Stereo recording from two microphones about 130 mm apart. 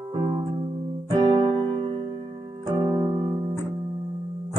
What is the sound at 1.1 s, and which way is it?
Music, 40° right (ahead or behind).